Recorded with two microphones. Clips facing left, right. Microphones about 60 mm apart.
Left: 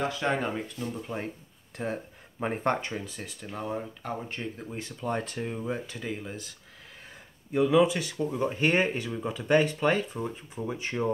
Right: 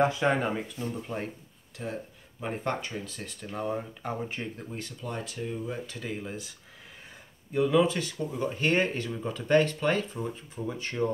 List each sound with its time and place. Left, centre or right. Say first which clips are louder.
0.2 s speech: right 2 dB; centre
1.1 s speech: even; centre
1.8 s speech: left 3 dB; left
2.9 s speech: left 1 dB; centre
4.7 s speech: left 6 dB; left
5.9 s speech: even; centre
7.5 s speech: left 2 dB; centre